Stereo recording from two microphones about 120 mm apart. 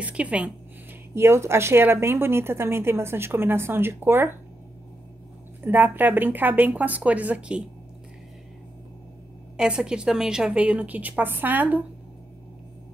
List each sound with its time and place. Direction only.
0.0 s a woman's voice: 10° right (ahead or behind)
1.1 s a woman's voice: 20° right (ahead or behind)
5.7 s a woman's voice: 15° right (ahead or behind)
9.6 s a woman's voice: 5° right (ahead or behind)